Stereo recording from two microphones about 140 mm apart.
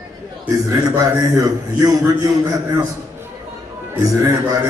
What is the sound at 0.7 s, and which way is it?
A man's voice, 25° right (ahead or behind).